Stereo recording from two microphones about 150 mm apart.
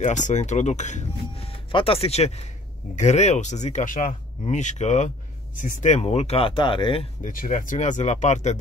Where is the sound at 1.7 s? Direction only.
40° left (ahead or behind).